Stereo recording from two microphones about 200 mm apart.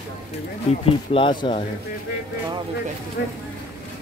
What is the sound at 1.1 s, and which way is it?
Speech, 25° left (ahead or behind).